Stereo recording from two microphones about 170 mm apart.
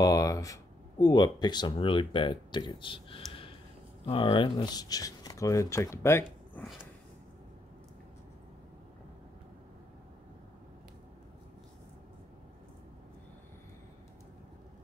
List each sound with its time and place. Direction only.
0.0 s speech: 20° left (ahead or behind)